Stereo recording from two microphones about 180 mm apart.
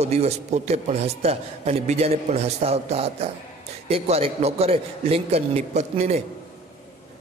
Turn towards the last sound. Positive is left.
turn(degrees=-35)  # may be behind; listen again after turning